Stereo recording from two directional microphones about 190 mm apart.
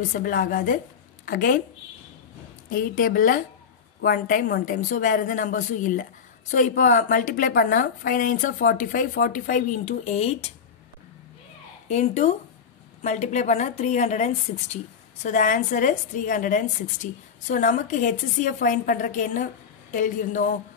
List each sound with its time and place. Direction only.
0.1 s a woman's voice: 45° left (ahead or behind)
2.7 s a woman's voice: 45° left (ahead or behind)
11.9 s a woman's voice: 35° left (ahead or behind)